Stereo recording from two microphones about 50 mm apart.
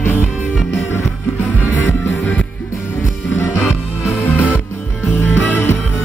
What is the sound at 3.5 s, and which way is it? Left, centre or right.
Music, left.